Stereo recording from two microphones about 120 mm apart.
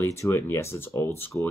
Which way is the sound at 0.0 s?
20° left (ahead or behind).